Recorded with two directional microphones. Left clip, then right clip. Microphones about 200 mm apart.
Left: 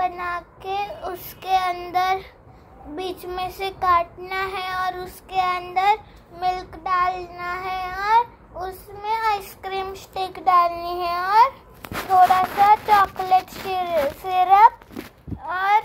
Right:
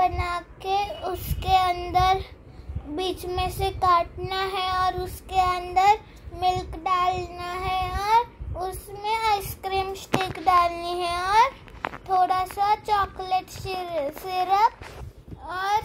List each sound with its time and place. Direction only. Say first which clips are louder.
0.0 s child singing: right 1 dB; 10° right (ahead or behind)
11.2 s babbling: left 4 dB; 15° left (ahead or behind)
12.6 s child singing: left 8 dB; 10° right (ahead or behind)
15.4 s a child's voice: left 6 dB; 10° right (ahead or behind)